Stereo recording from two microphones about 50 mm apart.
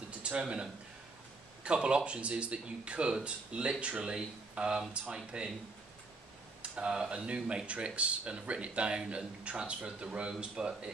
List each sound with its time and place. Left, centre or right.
0.2 s speech: right
6.6 s tick-tock: right
7.0 s speech: centre